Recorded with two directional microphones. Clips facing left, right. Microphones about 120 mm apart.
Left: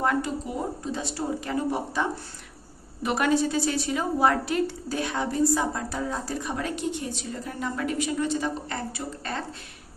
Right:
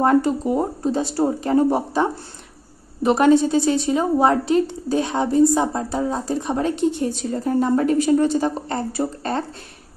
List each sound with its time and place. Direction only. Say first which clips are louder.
0.0 s a woman's voice: right 9 dB; 40° right (ahead or behind)